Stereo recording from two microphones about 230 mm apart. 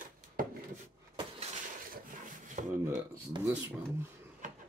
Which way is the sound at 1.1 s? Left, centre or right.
Right.